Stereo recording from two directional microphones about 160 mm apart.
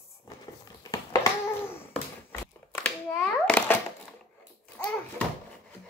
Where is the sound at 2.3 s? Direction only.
15° left (ahead or behind).